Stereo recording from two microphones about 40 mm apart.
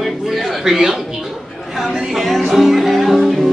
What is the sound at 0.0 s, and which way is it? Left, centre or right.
Chatter, centre.